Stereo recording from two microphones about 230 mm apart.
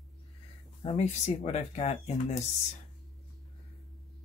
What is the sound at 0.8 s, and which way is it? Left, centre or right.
Speech, left.